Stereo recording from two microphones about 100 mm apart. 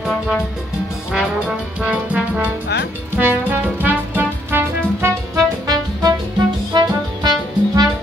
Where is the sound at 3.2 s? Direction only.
20° right (ahead or behind).